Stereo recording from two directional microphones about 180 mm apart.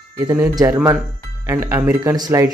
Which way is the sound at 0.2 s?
20° right (ahead or behind).